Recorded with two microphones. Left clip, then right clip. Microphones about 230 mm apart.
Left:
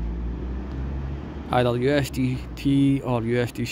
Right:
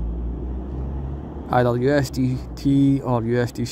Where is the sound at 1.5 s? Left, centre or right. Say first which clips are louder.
Right 3 dB; centre.